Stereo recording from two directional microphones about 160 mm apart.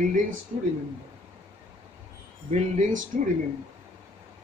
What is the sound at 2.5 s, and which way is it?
Speech, 45° right (ahead or behind).